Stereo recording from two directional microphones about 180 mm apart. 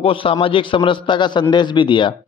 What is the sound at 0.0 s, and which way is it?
Speech, 30° left (ahead or behind).